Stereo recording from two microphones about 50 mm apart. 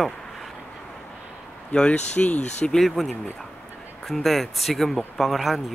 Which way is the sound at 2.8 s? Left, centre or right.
Centre.